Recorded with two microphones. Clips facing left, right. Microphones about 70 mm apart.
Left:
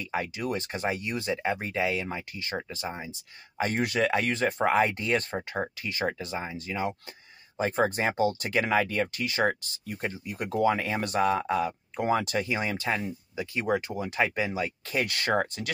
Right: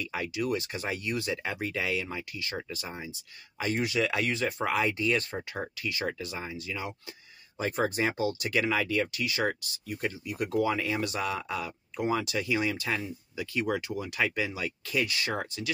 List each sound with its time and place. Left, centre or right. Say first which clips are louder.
0.0 s speech: left 1 dB; left